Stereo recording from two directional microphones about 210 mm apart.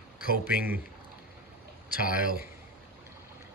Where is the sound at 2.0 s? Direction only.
40° left (ahead or behind).